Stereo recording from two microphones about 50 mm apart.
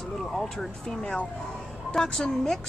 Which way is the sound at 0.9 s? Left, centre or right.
Centre.